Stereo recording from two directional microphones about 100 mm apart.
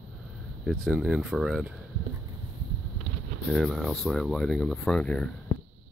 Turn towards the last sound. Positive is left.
turn(degrees=10)  # may be behind; listen again after turning